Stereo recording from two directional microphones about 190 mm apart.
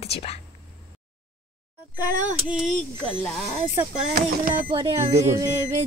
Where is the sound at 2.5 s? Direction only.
Centre (ahead or behind).